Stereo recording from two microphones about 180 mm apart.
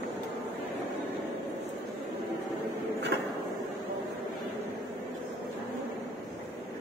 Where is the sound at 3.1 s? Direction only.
70° right (ahead or behind).